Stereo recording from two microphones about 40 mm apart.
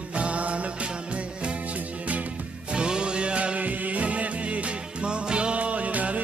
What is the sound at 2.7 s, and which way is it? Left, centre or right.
Music, right.